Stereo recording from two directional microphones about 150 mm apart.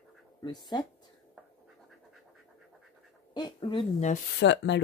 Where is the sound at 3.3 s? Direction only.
30° left (ahead or behind).